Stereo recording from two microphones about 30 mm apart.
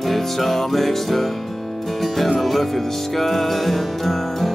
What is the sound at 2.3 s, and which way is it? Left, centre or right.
Music, centre.